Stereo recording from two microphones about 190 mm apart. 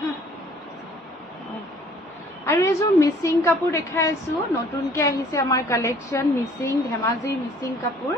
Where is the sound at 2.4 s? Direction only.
15° left (ahead or behind).